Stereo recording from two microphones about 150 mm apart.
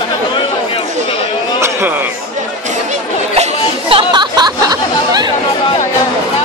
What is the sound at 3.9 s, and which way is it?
Chatter, 30° right (ahead or behind).